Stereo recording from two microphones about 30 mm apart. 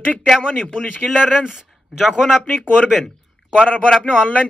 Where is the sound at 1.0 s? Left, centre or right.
Centre.